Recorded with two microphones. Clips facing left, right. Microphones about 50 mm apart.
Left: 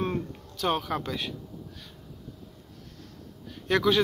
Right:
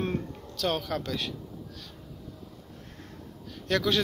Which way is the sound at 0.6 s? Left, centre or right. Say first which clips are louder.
Left 2 dB; centre.